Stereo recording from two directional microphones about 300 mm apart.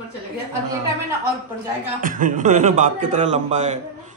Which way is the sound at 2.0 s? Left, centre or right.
Right.